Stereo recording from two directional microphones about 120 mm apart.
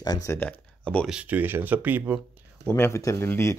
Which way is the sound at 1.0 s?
10° right (ahead or behind).